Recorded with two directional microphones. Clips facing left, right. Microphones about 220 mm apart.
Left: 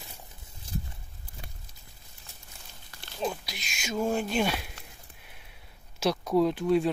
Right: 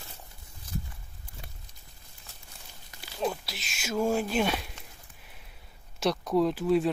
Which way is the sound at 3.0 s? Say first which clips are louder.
Right 1 dB; 5° right (ahead or behind).